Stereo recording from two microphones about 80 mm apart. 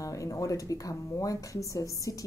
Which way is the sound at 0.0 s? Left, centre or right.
Left.